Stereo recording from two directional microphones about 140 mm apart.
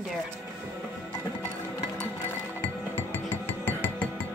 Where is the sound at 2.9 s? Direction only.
15° left (ahead or behind).